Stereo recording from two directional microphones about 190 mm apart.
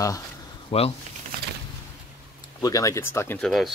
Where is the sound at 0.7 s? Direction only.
30° left (ahead or behind).